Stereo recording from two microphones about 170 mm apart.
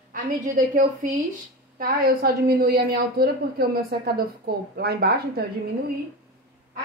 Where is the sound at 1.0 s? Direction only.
50° right (ahead or behind); by 5.4 s 70° right (ahead or behind).